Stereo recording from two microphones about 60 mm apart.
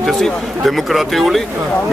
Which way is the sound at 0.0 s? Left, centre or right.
Centre.